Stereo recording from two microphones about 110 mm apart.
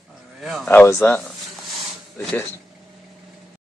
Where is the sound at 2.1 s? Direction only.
15° left (ahead or behind).